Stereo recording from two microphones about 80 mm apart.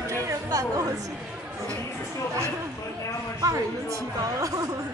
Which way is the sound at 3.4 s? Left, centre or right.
Right.